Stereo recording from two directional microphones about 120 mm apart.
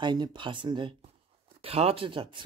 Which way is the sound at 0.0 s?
40° right (ahead or behind).